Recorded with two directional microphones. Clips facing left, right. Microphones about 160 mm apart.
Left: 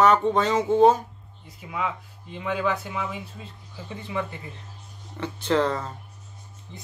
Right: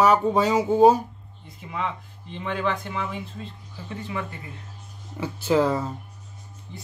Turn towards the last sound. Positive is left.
turn(degrees=-5)  # may be behind; listen again after turning